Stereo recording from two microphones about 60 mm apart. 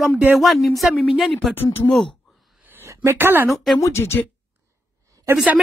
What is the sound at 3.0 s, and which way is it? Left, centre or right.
Speech, right.